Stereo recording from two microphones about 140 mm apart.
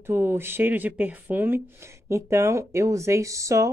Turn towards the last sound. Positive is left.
turn(degrees=-20)  # may be behind; listen again after turning